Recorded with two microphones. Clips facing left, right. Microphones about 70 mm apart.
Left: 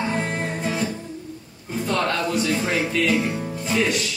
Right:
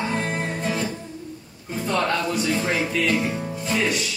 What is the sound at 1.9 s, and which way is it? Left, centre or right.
Music, centre.